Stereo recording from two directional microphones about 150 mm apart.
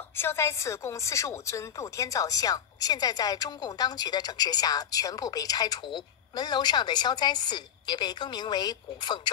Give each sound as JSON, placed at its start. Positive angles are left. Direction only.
{"t": 0.1, "sound": "a woman's voice", "side_deg": 15}